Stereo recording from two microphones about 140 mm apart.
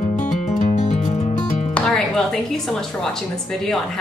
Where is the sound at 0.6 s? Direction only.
60° left (ahead or behind).